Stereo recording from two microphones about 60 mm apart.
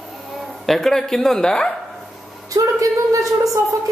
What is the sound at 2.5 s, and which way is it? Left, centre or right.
Speech, right.